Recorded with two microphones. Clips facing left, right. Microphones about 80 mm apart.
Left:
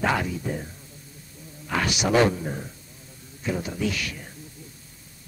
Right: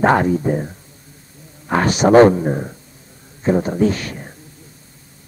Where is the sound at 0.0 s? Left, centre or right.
Right.